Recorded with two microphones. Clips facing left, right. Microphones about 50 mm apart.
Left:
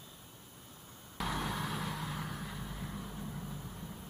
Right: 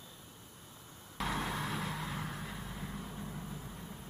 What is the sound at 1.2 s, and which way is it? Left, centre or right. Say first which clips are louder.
Vehicle: even; centre.